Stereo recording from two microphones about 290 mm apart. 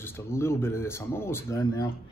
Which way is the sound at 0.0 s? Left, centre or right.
Centre.